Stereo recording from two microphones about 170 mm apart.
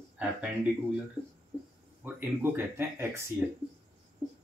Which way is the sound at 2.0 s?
10° right (ahead or behind).